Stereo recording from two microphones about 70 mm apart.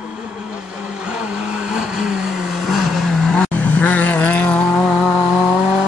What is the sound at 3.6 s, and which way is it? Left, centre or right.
Vehicle, left.